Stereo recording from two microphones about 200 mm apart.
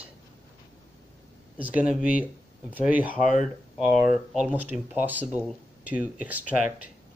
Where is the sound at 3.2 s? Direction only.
40° left (ahead or behind).